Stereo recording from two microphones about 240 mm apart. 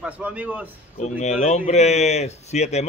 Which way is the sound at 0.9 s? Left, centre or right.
Left.